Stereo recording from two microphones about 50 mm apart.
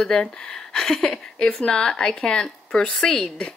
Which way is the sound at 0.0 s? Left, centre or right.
Centre.